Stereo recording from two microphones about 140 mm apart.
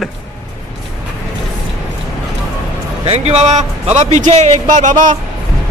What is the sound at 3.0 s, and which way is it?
A man's voice, 45° right (ahead or behind).